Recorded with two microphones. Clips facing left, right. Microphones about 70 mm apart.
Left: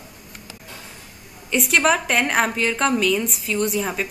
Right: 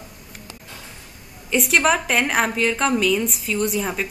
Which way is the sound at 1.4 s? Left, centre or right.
Centre.